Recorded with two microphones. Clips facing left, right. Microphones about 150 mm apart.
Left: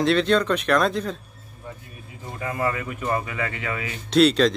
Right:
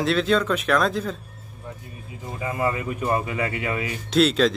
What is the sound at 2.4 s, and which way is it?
Speech, 15° right (ahead or behind).